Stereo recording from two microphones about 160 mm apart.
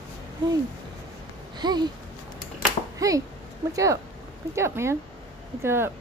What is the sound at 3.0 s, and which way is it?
A child's voice, 20° right (ahead or behind).